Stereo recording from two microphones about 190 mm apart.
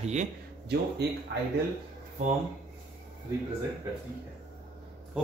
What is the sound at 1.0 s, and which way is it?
Speech, 60° right (ahead or behind).